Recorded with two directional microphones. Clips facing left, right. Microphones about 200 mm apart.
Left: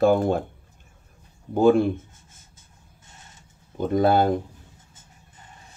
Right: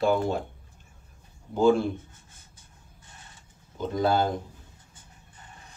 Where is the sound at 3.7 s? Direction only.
55° left (ahead or behind).